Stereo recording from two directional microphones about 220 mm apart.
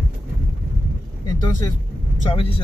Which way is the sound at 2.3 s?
25° left (ahead or behind).